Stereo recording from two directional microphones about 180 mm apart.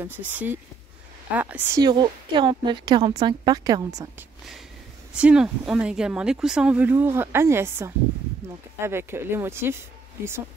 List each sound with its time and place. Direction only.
0.0 s speech: 10° right (ahead or behind)
1.8 s a woman's voice: 25° right (ahead or behind)
5.1 s speech: 5° right (ahead or behind)